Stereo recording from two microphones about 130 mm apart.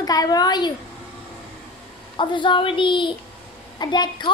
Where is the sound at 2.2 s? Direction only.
40° left (ahead or behind).